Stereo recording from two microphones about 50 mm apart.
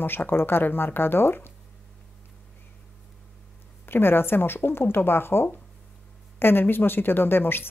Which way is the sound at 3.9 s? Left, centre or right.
Left.